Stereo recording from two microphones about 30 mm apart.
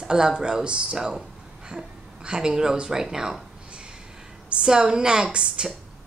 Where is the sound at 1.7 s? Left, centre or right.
Right.